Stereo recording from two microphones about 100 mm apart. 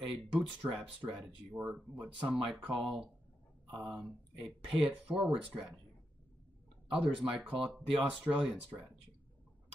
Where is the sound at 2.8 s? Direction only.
Centre (ahead or behind).